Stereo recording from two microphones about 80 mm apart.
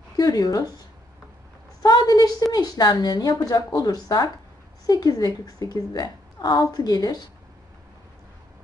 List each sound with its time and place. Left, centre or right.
0.2 s a woman's voice: left
1.8 s a sound: left
2.5 s a woman's voice: left